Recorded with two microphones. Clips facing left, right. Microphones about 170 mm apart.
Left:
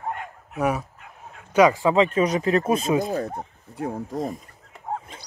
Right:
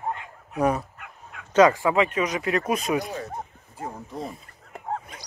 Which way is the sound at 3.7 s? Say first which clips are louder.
Left 7 dB; 60° left (ahead or behind).